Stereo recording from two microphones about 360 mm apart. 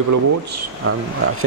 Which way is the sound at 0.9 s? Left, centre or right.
Right.